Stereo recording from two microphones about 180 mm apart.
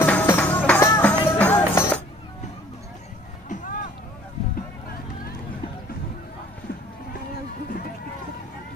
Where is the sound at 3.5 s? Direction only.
45° left (ahead or behind).